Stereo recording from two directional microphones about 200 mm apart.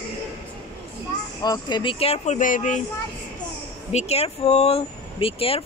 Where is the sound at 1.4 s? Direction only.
20° left (ahead or behind); by 2.8 s 40° left (ahead or behind).